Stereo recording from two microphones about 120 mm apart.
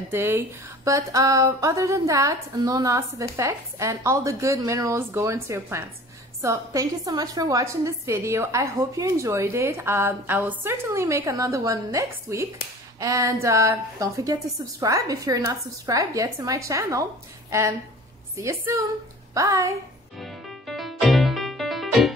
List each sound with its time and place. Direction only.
0.1 s a woman's voice: 20° right (ahead or behind)
20.2 s music: centre (ahead or behind)